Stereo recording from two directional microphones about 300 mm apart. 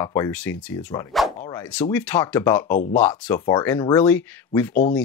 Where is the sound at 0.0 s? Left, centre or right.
Centre.